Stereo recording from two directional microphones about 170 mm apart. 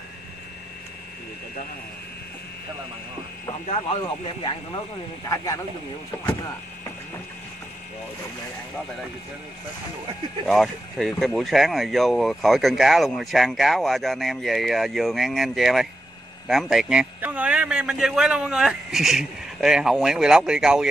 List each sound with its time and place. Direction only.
3.6 s speech: 35° left (ahead or behind)
5.3 s speech: 20° left (ahead or behind)
10.4 s speech: centre (ahead or behind)